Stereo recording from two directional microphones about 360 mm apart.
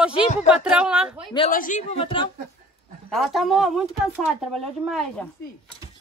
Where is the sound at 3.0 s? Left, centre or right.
Centre.